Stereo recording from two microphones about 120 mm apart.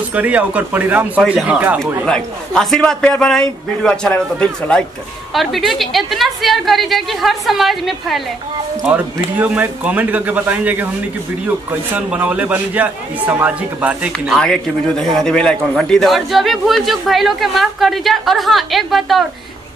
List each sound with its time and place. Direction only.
0.1 s a man's voice: 10° right (ahead or behind)
2.0 s a man's voice: 5° left (ahead or behind)
8.8 s a man's voice: 15° right (ahead or behind)
14.4 s a man's voice: 5° left (ahead or behind)